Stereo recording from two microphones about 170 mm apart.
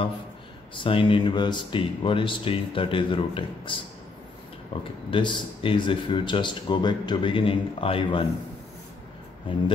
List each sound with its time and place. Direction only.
0.7 s speech: 30° left (ahead or behind)
5.1 s speech: 30° left (ahead or behind)